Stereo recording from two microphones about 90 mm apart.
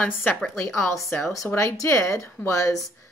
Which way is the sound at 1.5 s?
30° left (ahead or behind).